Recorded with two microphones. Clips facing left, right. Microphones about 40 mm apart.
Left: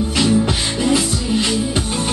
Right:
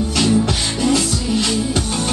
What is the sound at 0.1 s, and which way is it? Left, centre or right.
Music, centre.